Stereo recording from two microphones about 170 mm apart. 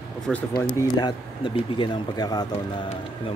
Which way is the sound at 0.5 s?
25° left (ahead or behind).